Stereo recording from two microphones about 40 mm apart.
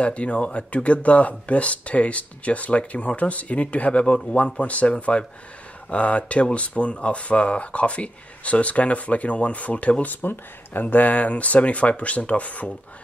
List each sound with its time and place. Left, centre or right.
0.0 s speech: left
10.2 s speech: left